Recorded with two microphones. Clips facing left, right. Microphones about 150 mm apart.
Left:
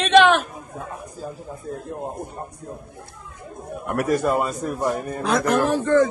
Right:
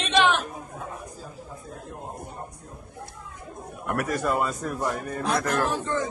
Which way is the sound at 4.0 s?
20° left (ahead or behind).